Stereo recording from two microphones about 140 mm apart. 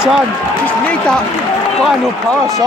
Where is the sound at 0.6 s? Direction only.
5° left (ahead or behind).